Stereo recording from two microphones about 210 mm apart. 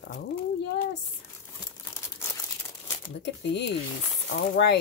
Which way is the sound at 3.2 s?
55° left (ahead or behind).